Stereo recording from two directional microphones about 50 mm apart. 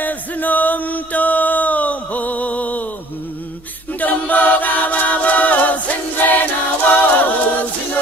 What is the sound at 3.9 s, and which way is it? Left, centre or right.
A capella, left.